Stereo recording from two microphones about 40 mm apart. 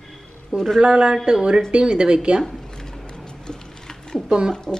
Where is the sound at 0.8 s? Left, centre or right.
Right.